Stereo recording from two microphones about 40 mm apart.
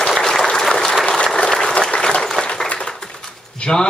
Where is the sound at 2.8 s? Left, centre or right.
Centre.